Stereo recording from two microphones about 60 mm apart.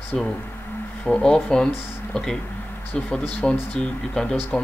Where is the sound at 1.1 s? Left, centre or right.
Centre.